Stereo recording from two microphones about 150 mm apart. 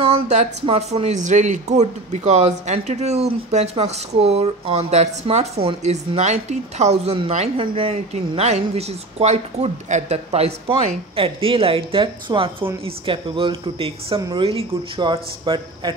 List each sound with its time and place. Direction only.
0.0 s speech: 45° right (ahead or behind); by 15.9 s 30° right (ahead or behind)